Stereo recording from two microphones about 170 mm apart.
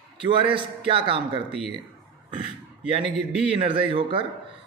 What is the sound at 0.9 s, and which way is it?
Speech, 30° right (ahead or behind).